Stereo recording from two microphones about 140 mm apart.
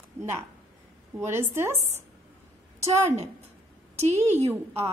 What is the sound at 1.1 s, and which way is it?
Speech, 15° right (ahead or behind).